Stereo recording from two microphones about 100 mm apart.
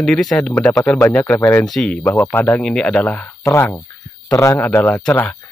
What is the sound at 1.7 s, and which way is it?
Speech, 10° left (ahead or behind).